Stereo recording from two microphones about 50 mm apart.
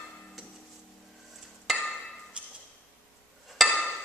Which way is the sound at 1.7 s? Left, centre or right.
Centre.